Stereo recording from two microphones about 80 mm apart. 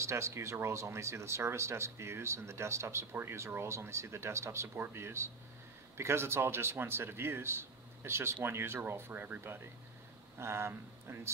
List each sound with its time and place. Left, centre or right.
0.0 s speech: right